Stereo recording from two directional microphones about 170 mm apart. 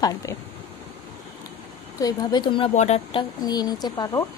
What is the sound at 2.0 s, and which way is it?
Speech, 20° left (ahead or behind).